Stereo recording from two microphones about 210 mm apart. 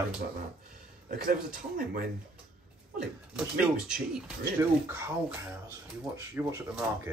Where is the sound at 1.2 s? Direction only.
45° right (ahead or behind).